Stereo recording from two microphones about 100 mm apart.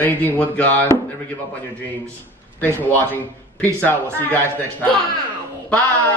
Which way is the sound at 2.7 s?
20° left (ahead or behind).